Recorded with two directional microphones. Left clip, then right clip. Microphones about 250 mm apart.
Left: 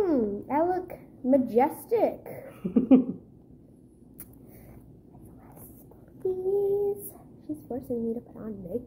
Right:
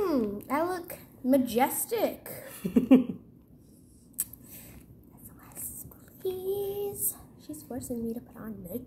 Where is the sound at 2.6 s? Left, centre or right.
Right.